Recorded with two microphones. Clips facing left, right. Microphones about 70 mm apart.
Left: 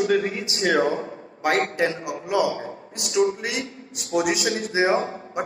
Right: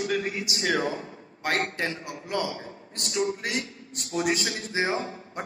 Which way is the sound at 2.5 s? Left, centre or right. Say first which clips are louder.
Left 7 dB; left.